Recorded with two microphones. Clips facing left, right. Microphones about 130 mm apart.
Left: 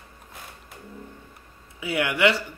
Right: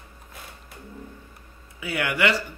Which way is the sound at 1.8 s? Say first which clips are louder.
Left 2 dB; 20° left (ahead or behind).